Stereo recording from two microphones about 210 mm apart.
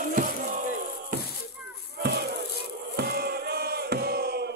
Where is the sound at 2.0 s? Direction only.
50° right (ahead or behind).